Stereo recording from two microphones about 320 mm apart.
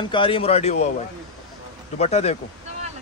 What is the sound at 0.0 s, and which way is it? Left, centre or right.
Speech, centre.